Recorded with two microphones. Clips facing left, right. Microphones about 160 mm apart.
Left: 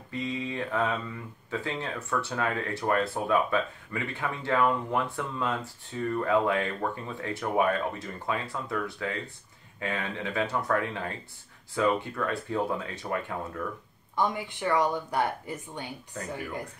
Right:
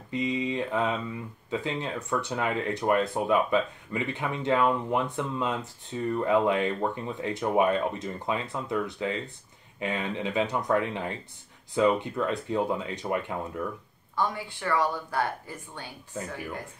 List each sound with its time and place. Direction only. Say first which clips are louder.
0.1 s mantra: right 4 dB; 15° right (ahead or behind)
1.5 s speech: right 2 dB; 15° right (ahead or behind)
14.1 s speech: left 1 dB; 20° left (ahead or behind)